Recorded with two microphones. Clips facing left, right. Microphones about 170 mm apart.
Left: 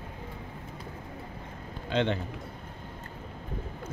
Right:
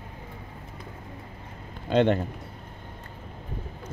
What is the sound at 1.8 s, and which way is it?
Speech, 50° right (ahead or behind).